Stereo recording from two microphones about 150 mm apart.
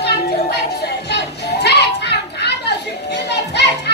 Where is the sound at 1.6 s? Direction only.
90° left.